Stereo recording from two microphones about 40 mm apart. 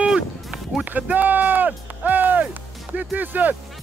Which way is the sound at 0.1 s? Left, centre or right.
Centre.